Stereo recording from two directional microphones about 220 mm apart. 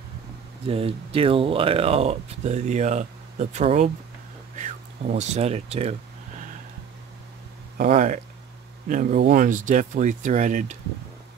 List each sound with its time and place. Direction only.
0.7 s speech: 25° right (ahead or behind)
7.7 s speech: 35° right (ahead or behind)